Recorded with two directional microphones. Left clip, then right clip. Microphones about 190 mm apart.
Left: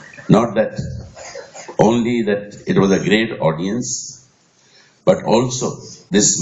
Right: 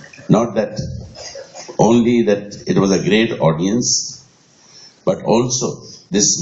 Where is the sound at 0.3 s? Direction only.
30° left (ahead or behind).